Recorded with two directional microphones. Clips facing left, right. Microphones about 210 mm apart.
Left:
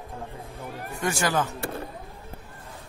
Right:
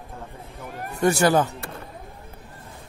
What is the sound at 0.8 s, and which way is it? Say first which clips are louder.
Speech: right 8 dB; 40° right (ahead or behind).